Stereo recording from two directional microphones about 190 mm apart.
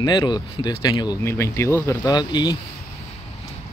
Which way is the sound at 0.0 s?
20° left (ahead or behind).